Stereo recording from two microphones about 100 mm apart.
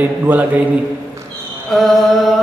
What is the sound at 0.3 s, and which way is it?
Mantra, 15° right (ahead or behind).